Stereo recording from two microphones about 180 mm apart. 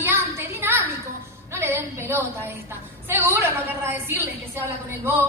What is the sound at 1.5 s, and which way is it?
A woman's voice, 15° right (ahead or behind).